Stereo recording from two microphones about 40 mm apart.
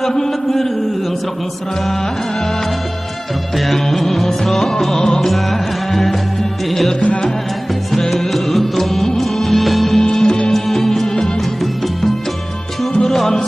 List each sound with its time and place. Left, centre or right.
0.0 s a sound: centre
3.5 s music: centre
5.2 s music: centre
8.1 s music: centre
9.9 s music: centre
10.5 s music: centre
13.1 s music: centre